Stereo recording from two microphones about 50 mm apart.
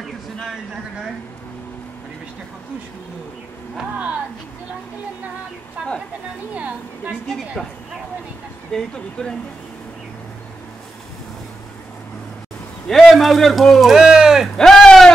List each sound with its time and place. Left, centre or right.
5.8 s a woman's voice: right
7.2 s speech: centre
8.7 s speech: centre
13.0 s speech: centre
14.6 s a sound: centre